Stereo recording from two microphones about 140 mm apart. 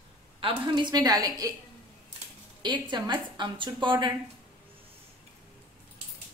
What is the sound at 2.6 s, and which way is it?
A woman's voice, 30° right (ahead or behind).